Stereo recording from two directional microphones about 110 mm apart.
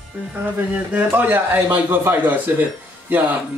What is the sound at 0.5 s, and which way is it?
A man's voice, 15° right (ahead or behind).